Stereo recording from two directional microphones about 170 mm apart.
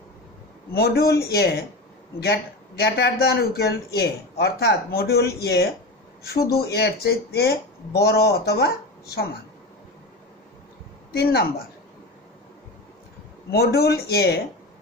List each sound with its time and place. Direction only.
0.7 s a man's voice: 65° left (ahead or behind)
2.8 s a man's voice: 70° left (ahead or behind)
11.1 s a man's voice: 70° left (ahead or behind)
13.5 s a man's voice: 65° left (ahead or behind)